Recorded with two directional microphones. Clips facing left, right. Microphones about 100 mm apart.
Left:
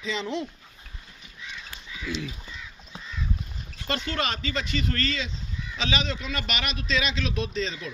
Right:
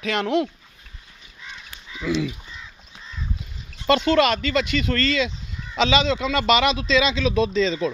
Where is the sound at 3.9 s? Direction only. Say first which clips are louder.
Right 12 dB; 90° right.